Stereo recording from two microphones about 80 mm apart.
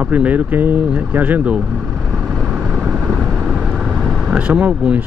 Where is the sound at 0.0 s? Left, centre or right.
Centre.